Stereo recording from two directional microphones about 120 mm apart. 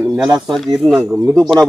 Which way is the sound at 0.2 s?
Centre (ahead or behind).